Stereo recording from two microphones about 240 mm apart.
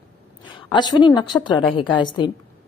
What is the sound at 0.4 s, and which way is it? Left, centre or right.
A woman's voice, centre.